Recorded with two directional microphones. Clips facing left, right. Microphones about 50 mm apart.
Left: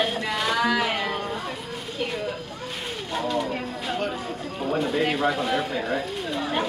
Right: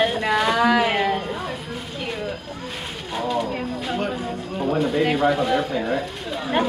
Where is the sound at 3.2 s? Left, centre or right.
Centre.